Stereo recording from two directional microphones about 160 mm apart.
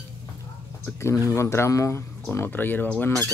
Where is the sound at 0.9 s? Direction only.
20° left (ahead or behind).